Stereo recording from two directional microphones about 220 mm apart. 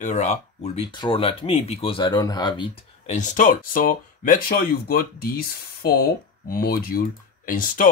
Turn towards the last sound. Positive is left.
turn(degrees=40)  # may be behind; listen again after turning